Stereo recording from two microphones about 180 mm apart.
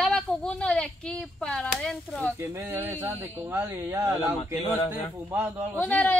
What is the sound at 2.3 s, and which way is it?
Speech, 15° right (ahead or behind).